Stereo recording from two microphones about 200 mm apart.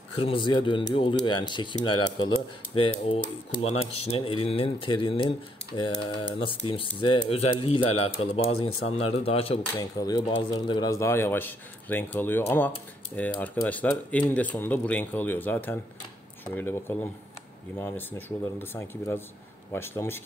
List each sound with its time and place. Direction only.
0.2 s speech: 25° left (ahead or behind)
3.2 s speech: 45° left (ahead or behind)
3.9 s speech: 30° left (ahead or behind)
9.8 s speech: 20° left (ahead or behind)